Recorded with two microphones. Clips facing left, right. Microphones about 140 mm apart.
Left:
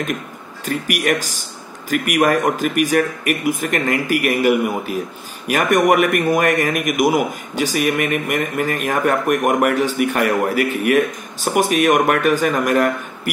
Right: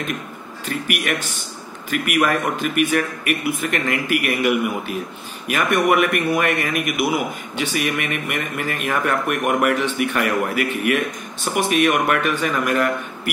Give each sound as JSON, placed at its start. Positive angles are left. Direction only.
{"t": 0.7, "sound": "a man's voice", "side_deg": 40}